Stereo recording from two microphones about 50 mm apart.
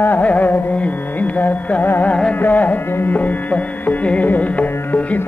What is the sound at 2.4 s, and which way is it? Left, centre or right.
Music, left.